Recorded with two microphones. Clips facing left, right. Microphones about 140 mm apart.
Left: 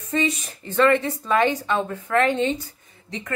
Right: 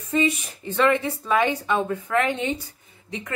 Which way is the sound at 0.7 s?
15° right (ahead or behind).